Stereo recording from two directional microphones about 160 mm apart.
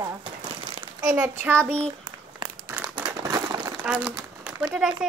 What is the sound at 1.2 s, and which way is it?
Speech, 10° right (ahead or behind).